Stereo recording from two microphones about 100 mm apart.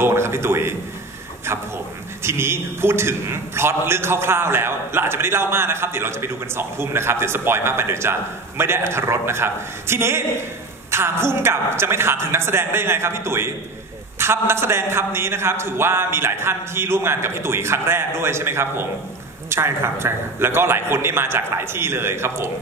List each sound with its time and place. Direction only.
0.0 s a man's voice: 25° right (ahead or behind)
2.2 s a man's voice: 25° right (ahead or behind)